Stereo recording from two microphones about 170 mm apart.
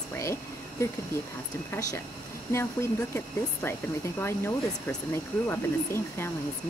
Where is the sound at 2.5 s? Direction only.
15° left (ahead or behind).